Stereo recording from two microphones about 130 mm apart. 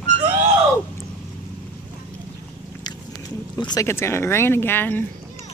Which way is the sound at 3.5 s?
30° left (ahead or behind).